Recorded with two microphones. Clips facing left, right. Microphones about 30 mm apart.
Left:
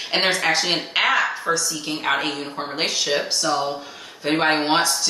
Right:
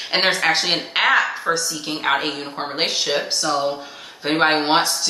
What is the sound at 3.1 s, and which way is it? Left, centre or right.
Speech, centre.